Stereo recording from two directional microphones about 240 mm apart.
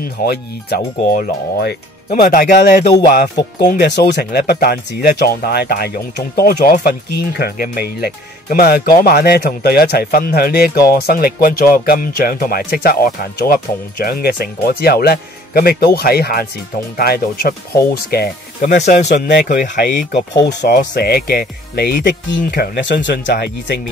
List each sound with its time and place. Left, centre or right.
0.2 s speech: left
18.8 s speech: left